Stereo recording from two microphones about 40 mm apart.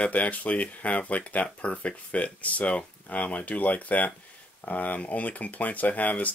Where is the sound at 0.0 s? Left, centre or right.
Left.